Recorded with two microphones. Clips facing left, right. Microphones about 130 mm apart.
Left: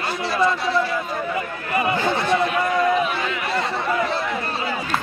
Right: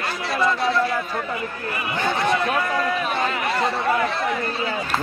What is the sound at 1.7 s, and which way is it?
Speech, 35° left (ahead or behind).